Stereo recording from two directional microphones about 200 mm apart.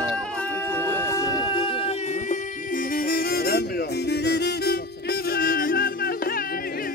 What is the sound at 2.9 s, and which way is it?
Music, 45° left (ahead or behind).